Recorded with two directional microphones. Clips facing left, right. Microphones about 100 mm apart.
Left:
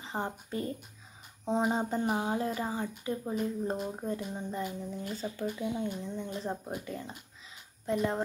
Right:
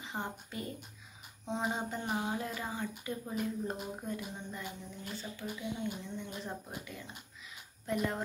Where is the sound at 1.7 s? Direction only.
35° left (ahead or behind).